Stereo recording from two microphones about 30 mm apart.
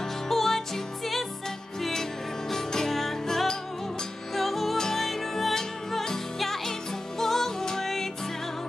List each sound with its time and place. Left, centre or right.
0.3 s music: centre
1.8 s music: centre
2.9 s music: centre